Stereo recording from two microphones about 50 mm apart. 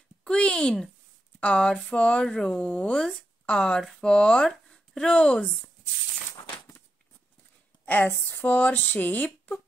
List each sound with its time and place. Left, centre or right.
0.2 s a sound: centre
1.4 s speech: left
2.2 s speech: centre
2.5 s speech: left
7.8 s a sound: left
8.9 s speech: left